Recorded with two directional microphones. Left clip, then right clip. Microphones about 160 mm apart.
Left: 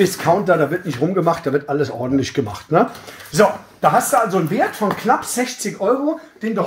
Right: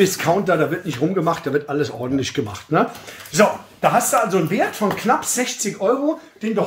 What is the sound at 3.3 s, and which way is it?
Speech, 15° left (ahead or behind).